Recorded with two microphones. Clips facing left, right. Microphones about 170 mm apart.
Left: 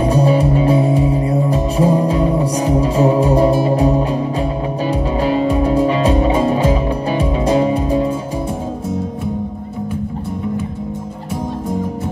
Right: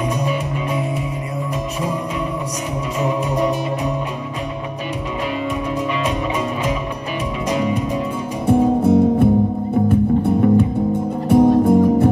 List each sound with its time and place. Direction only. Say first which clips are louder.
0.1 s music: left 8 dB; 30° left (ahead or behind)
5.3 s music: left 9 dB; 35° left (ahead or behind)
8.5 s music: right 9 dB; 60° right (ahead or behind)